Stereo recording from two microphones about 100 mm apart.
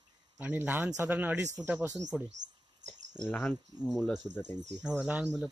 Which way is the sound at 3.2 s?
10° left (ahead or behind).